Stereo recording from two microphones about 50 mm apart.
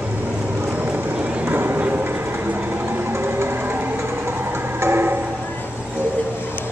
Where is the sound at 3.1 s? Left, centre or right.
Right.